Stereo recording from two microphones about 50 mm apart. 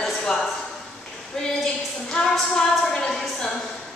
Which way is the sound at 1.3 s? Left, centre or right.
Centre.